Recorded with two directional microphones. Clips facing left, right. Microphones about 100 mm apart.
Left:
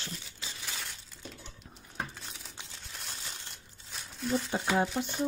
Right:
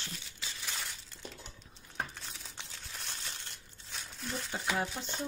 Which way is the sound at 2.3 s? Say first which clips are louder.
Left 1 dB; centre (ahead or behind).